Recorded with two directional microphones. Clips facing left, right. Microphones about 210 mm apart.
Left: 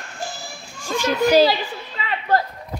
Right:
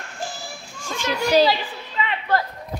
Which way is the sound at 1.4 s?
40° left (ahead or behind).